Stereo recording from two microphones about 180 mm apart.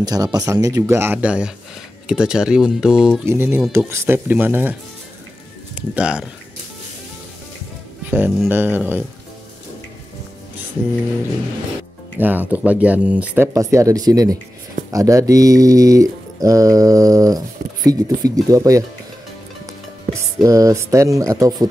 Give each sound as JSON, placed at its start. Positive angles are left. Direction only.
{"t": 0.0, "sound": "speech", "side_deg": -20}
{"t": 5.8, "sound": "speech", "side_deg": -5}
{"t": 8.5, "sound": "speech", "side_deg": -10}
{"t": 12.2, "sound": "speech", "side_deg": -10}
{"t": 20.4, "sound": "speech", "side_deg": -20}